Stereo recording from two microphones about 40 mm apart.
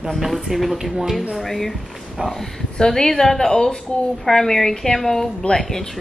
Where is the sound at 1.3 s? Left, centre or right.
Centre.